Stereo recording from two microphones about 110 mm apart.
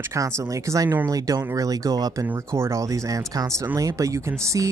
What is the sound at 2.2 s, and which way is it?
Speech, 20° right (ahead or behind).